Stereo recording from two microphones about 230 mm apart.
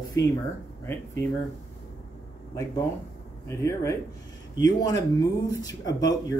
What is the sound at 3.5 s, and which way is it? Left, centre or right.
Speech, centre.